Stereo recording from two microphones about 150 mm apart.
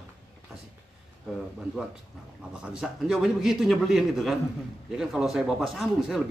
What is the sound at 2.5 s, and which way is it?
Speech, 5° right (ahead or behind).